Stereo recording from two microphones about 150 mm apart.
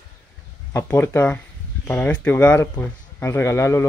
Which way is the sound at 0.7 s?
15° left (ahead or behind).